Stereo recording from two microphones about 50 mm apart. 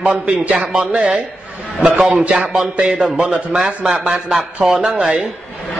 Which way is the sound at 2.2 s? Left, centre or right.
Right.